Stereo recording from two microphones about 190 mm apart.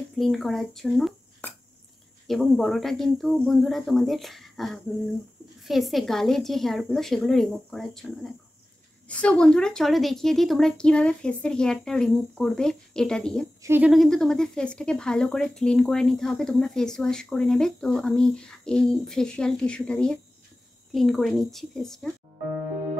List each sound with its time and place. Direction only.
0.2 s speech: centre (ahead or behind)
13.6 s speech: 10° right (ahead or behind)